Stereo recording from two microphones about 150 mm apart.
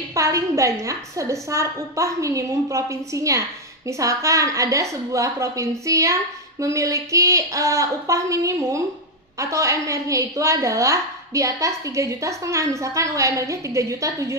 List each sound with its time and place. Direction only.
0.1 s a woman's voice: 20° right (ahead or behind)